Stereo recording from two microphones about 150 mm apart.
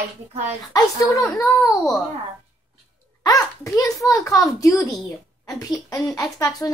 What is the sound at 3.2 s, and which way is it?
A child's voice, 25° left (ahead or behind).